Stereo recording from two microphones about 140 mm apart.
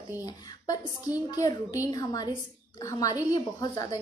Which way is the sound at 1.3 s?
25° left (ahead or behind).